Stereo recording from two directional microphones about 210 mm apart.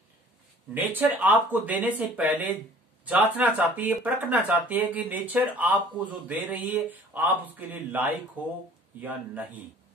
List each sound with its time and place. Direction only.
0.7 s speech: 10° right (ahead or behind)